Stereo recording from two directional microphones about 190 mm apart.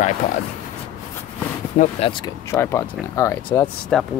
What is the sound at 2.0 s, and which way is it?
Speech, 25° left (ahead or behind).